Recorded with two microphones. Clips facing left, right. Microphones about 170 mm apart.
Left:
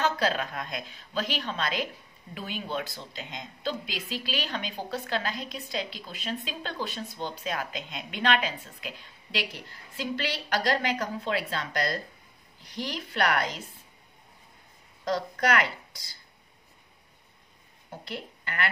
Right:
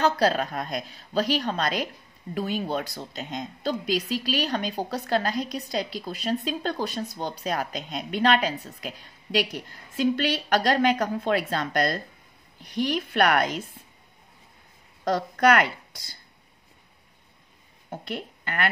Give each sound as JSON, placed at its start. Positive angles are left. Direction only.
{"t": 0.0, "sound": "a woman's voice", "side_deg": -40}
{"t": 15.0, "sound": "a woman's voice", "side_deg": -55}
{"t": 17.8, "sound": "a woman's voice", "side_deg": -55}